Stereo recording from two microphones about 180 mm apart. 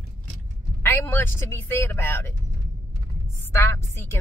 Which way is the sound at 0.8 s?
10° left (ahead or behind).